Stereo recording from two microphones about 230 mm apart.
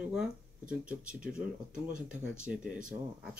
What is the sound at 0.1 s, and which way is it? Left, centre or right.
Speech, centre.